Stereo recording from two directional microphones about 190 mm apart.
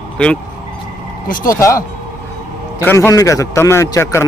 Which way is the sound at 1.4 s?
15° left (ahead or behind).